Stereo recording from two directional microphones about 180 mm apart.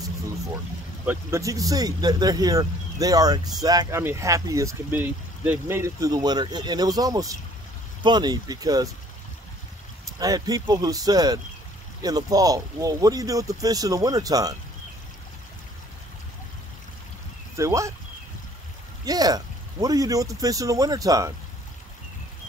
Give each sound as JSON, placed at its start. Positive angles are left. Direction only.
{"t": 1.0, "sound": "speech", "side_deg": -15}
{"t": 10.1, "sound": "speech", "side_deg": -20}
{"t": 17.6, "sound": "speech", "side_deg": -15}
{"t": 19.0, "sound": "speech", "side_deg": -20}